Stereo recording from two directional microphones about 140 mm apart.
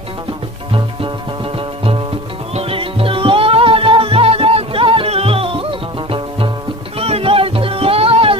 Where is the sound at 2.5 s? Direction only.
40° right (ahead or behind).